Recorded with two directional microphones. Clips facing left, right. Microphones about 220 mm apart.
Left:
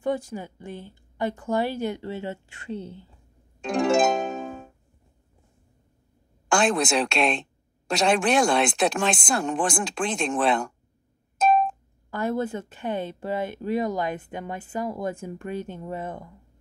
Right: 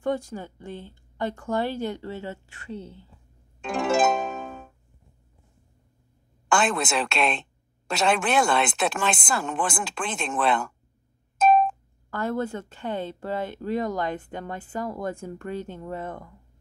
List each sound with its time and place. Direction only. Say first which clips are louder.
0.3 s a woman's voice: left 1 dB; 15° left (ahead or behind)
3.6 s music: left 2 dB; 5° right (ahead or behind)
6.5 s speech: left 2 dB; 5° right (ahead or behind)
12.1 s speech: left 1 dB; 15° left (ahead or behind)